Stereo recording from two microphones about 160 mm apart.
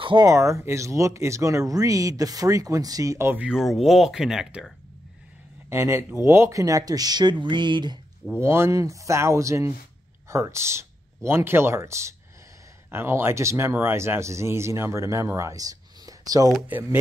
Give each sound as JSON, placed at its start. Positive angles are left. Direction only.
{"t": 0.0, "sound": "speech", "side_deg": -25}
{"t": 5.7, "sound": "speech", "side_deg": -15}
{"t": 8.3, "sound": "speech", "side_deg": -15}